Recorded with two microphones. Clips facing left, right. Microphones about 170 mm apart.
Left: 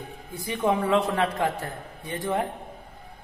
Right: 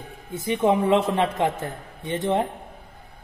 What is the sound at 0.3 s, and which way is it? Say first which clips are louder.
A man's voice: right 4 dB; 25° right (ahead or behind).